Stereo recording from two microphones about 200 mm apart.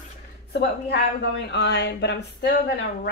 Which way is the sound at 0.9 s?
60° left (ahead or behind).